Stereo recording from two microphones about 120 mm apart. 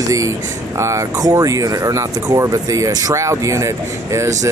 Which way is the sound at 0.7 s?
25° right (ahead or behind).